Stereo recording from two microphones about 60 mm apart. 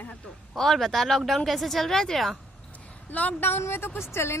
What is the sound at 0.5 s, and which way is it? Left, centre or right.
Speech, centre.